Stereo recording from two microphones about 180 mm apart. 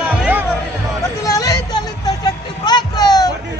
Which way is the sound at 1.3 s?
20° left (ahead or behind).